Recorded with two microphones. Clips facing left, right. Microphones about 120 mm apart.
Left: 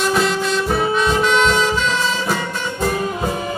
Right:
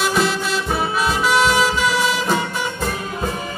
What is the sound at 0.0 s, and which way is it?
Music, centre (ahead or behind).